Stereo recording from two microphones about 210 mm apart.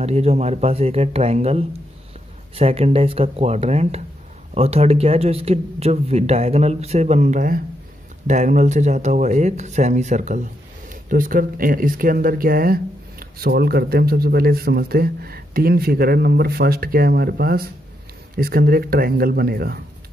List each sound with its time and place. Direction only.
0.0 s speech: 30° right (ahead or behind); by 19.8 s 45° right (ahead or behind)